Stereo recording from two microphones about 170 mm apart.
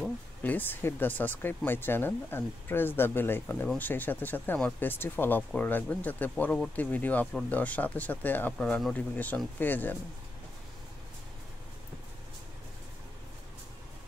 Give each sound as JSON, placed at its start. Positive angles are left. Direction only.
{"t": 0.0, "sound": "speech", "side_deg": 10}